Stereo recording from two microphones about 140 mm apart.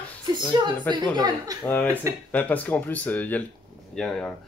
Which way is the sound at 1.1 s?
25° right (ahead or behind).